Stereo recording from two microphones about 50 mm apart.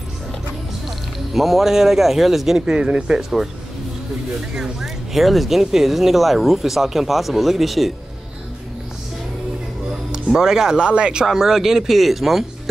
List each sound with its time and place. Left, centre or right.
0.8 s speech: centre
2.6 s speech: centre
4.6 s speech: centre
10.1 s speech: centre
11.2 s speech: centre